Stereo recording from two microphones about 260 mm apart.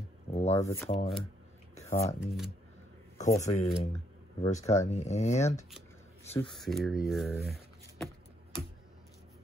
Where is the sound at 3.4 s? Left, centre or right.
Left.